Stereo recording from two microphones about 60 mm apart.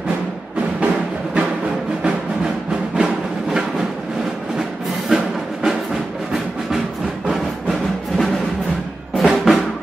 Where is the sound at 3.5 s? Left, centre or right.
Centre.